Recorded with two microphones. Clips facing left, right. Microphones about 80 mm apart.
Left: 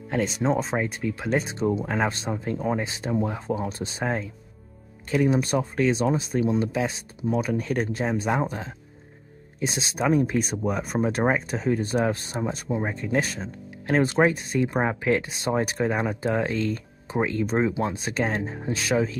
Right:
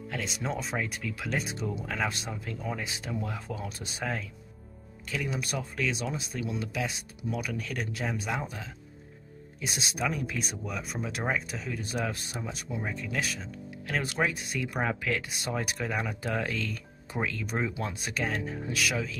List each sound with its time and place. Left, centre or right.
0.1 s speech: left